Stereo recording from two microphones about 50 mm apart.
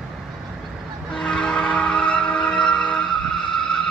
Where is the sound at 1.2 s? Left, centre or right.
Centre.